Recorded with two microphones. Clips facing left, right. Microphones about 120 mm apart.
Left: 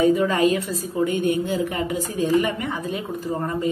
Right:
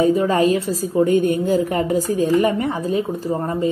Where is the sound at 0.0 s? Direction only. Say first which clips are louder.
Right 2 dB; 30° right (ahead or behind).